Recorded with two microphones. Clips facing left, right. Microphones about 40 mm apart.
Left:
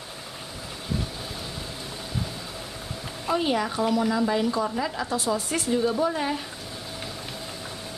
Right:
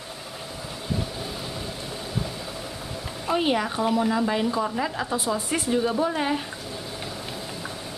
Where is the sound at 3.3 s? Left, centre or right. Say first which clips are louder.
Right 1 dB; centre.